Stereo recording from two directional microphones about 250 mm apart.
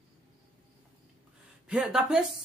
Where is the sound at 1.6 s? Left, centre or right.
Centre.